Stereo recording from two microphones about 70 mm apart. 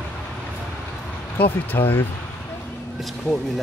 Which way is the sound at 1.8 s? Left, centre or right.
Left.